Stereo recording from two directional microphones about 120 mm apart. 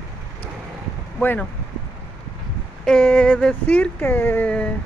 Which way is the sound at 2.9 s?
10° left (ahead or behind).